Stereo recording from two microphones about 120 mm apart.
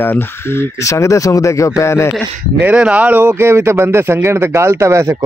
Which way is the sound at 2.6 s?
10° right (ahead or behind).